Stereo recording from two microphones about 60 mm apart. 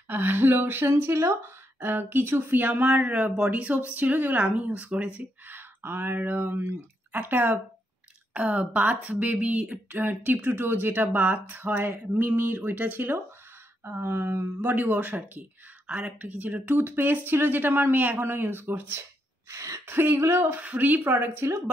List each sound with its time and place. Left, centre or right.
0.1 s speech: right
5.5 s speech: right
14.0 s speech: right
14.7 s speech: right
19.5 s a sound: right
19.9 s speech: right
20.5 s speech: right
21.4 s speech: right